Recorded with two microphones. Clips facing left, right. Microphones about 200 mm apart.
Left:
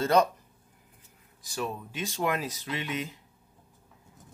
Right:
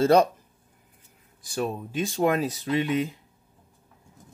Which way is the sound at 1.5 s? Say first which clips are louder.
Right 5 dB; 30° right (ahead or behind).